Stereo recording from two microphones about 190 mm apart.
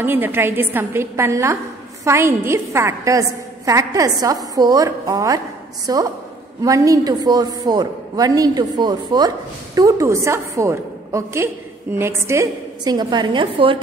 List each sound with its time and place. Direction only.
0.0 s a woman's voice: 10° right (ahead or behind); by 13.7 s 25° right (ahead or behind)